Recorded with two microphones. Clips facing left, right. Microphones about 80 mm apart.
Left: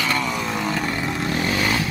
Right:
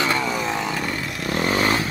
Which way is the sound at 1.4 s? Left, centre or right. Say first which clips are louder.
Right 4 dB; right.